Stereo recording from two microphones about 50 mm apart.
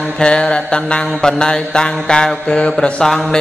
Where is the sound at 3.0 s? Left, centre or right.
Centre.